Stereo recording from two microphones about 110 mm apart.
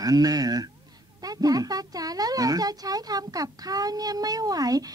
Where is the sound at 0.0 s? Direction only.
35° right (ahead or behind).